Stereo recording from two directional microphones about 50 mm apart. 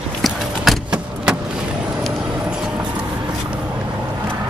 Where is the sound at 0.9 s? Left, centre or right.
Centre.